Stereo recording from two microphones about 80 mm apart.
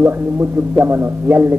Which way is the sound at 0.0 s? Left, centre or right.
Right.